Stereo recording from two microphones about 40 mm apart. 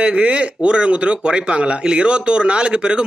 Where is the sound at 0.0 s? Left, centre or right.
Right.